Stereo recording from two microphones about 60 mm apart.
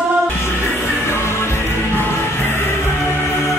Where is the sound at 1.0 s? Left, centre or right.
Left.